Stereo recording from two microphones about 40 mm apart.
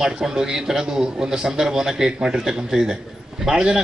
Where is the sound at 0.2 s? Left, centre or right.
Centre.